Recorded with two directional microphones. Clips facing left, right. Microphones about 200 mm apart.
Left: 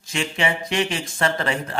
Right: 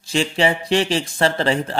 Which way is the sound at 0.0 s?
30° right (ahead or behind).